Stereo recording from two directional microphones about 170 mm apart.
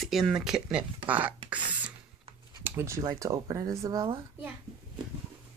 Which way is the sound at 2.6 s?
15° right (ahead or behind).